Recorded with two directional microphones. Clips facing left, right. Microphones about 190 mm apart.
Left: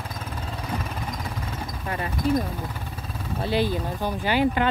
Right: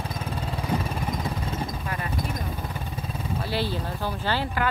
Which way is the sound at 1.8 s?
25° left (ahead or behind).